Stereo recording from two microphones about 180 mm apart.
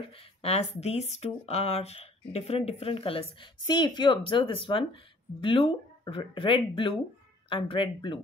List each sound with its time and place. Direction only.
0.4 s speech: 35° left (ahead or behind)